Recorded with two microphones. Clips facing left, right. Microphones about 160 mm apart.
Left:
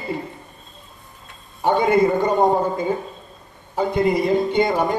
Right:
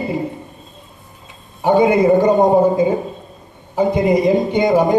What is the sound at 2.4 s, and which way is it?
Speech, 15° right (ahead or behind).